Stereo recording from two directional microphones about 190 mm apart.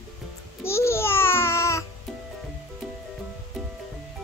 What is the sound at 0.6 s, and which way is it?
Babbling, 15° left (ahead or behind).